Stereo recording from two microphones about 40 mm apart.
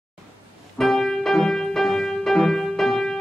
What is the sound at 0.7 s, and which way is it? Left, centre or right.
Music, centre.